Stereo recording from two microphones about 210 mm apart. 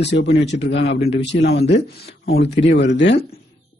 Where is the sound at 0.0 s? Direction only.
55° left (ahead or behind).